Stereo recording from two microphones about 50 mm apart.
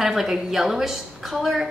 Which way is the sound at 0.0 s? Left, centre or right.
Centre.